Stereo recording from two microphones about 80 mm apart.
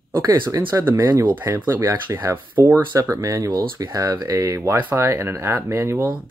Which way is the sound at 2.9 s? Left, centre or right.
Right.